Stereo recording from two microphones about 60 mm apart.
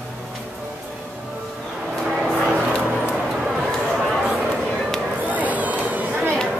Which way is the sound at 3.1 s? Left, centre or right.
Centre.